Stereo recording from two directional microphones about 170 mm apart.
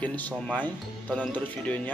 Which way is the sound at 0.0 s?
10° left (ahead or behind).